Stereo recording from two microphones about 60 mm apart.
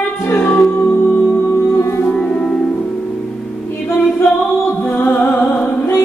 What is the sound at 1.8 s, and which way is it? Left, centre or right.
Music, left.